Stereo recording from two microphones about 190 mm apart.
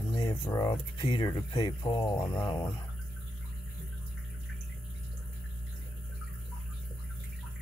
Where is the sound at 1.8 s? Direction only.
15° left (ahead or behind).